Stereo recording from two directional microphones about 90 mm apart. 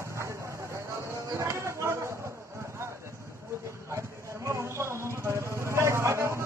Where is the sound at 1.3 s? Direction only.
30° right (ahead or behind).